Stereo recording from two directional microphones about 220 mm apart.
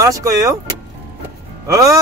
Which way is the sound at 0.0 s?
15° right (ahead or behind).